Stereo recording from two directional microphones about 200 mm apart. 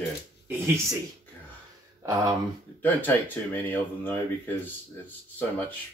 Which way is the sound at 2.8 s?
10° left (ahead or behind).